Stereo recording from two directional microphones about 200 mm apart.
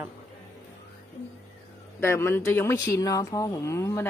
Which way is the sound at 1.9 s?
10° left (ahead or behind).